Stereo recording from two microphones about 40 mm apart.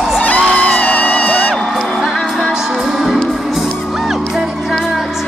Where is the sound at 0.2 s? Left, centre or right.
Left.